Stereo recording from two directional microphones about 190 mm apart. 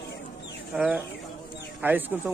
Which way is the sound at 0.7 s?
5° right (ahead or behind).